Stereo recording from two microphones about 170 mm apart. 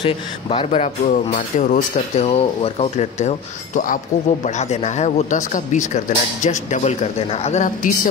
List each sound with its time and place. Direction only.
0.0 s speech: 30° left (ahead or behind); by 8.1 s 50° left (ahead or behind)